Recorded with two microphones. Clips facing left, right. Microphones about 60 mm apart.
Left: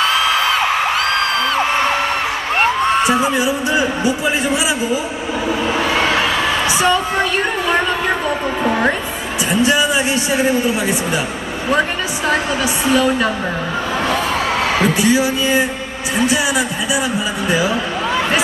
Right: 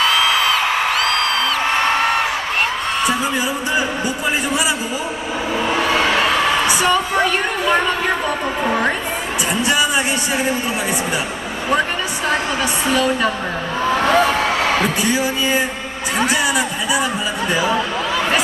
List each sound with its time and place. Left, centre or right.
3.1 s speech: centre
5.7 s a sound: centre
8.6 s a man's voice: centre
12.9 s a man's voice: centre
14.8 s speech: centre
17.5 s speech: centre